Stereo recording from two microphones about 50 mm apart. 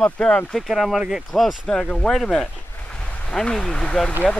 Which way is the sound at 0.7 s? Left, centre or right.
Centre.